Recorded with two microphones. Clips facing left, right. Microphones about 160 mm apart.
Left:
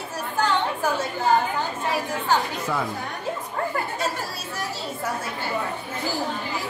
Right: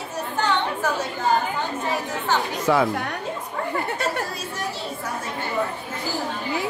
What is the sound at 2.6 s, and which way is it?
Speech, 85° right.